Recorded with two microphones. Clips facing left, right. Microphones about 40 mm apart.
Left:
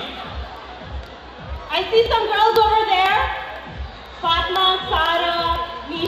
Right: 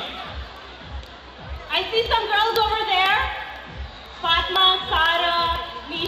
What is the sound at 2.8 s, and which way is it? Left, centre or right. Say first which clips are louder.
Music: left 3 dB; centre.